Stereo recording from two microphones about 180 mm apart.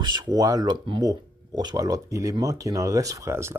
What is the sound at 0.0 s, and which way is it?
Speech, 25° right (ahead or behind).